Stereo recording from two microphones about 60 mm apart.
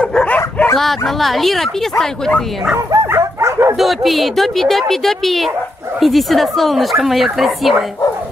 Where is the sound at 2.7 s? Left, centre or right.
Right.